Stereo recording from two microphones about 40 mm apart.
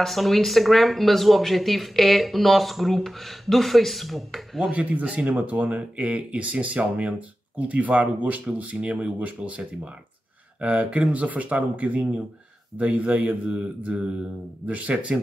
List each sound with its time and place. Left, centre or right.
0.0 s speech: centre
4.7 s speech: right
14.7 s speech: right